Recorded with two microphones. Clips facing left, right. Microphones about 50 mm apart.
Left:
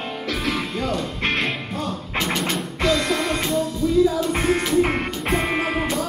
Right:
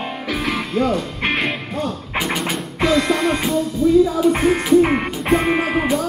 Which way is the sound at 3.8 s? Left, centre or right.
Centre.